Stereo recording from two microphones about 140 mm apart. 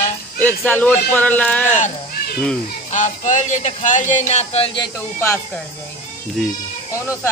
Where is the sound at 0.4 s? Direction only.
10° left (ahead or behind).